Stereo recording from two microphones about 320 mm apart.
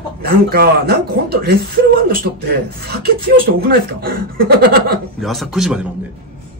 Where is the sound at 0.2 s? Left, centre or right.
Right.